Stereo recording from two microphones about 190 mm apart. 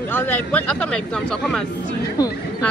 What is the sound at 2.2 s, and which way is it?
Speech, 20° left (ahead or behind).